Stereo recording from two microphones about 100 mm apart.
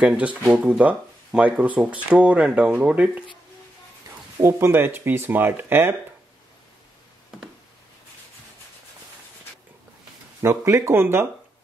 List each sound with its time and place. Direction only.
0.0 s speech: 15° right (ahead or behind)
4.1 s a sound: 35° right (ahead or behind)
4.4 s speech: 25° right (ahead or behind)
10.4 s speech: 25° right (ahead or behind)